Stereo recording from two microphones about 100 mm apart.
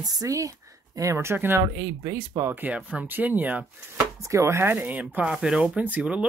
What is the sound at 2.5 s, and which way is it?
Speech, 20° right (ahead or behind).